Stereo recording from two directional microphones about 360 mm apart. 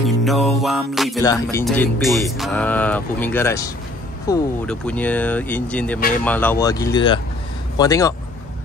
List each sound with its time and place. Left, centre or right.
0.0 s music: centre
1.7 s speech: centre